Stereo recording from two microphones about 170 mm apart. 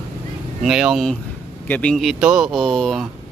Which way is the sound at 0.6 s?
5° right (ahead or behind).